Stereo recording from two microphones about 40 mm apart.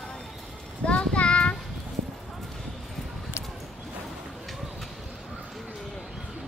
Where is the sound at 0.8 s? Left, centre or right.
Left.